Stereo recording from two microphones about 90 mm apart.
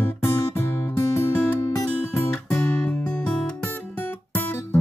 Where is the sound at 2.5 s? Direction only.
25° left (ahead or behind); by 3.5 s 10° left (ahead or behind).